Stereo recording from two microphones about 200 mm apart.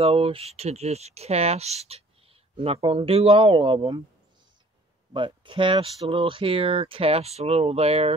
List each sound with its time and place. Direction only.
0.0 s speech: 30° right (ahead or behind)
5.1 s speech: 25° right (ahead or behind)